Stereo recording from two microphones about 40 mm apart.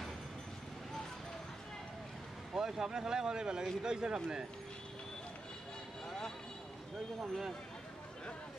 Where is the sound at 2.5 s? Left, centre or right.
Centre.